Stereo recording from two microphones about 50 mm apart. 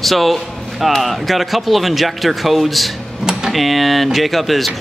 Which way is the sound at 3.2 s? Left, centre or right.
Centre.